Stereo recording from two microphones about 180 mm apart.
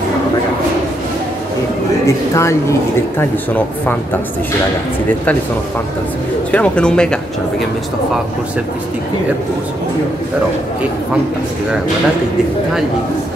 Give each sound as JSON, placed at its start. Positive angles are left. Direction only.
{"t": 2.0, "sound": "speech", "side_deg": 15}
{"t": 6.5, "sound": "speech", "side_deg": 5}